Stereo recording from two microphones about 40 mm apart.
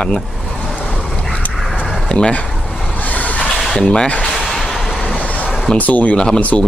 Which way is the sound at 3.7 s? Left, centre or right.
Left.